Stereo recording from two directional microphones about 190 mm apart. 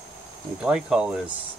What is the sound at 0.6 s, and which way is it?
Speech, 5° right (ahead or behind).